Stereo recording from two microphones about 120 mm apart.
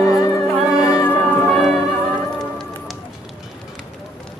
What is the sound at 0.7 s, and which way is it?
Music, 25° left (ahead or behind).